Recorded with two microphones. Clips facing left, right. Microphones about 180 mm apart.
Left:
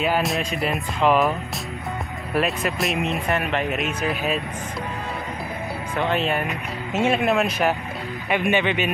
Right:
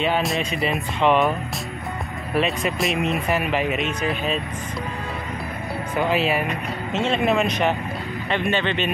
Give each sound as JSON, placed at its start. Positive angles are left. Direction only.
{"t": 0.0, "sound": "speech", "side_deg": 0}
{"t": 2.3, "sound": "speech", "side_deg": 0}
{"t": 5.9, "sound": "speech", "side_deg": -5}